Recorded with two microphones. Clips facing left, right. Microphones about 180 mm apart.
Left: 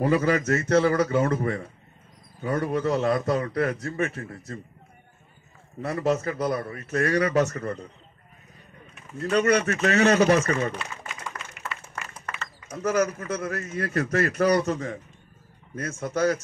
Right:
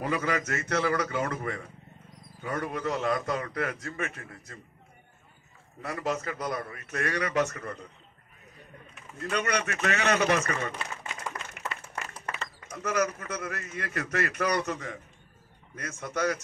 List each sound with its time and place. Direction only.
0.0 s a man's voice: 35° left (ahead or behind)
5.8 s a man's voice: 35° left (ahead or behind)
9.2 s a man's voice: 35° left (ahead or behind)
12.6 s a man's voice: 30° left (ahead or behind)